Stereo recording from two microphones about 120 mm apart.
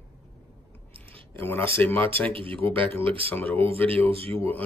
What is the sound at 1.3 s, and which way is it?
Speech, 20° left (ahead or behind).